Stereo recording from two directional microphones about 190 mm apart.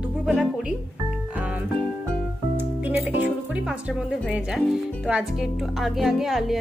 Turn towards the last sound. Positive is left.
turn(degrees=0)  # may be behind; listen again after turning